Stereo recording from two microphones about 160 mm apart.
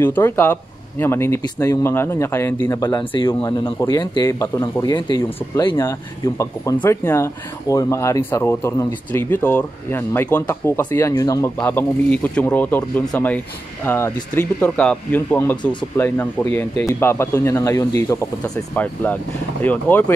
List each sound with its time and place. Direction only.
0.0 s a man's voice: 15° left (ahead or behind); by 5.8 s 30° left (ahead or behind)
5.8 s speech: 20° left (ahead or behind)
19.6 s speech: 10° left (ahead or behind)